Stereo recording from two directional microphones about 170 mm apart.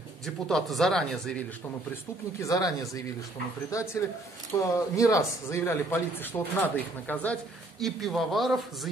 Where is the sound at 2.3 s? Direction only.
20° left (ahead or behind).